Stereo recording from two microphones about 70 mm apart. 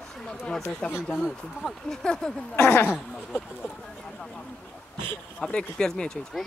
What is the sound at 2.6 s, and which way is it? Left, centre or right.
Speech, left.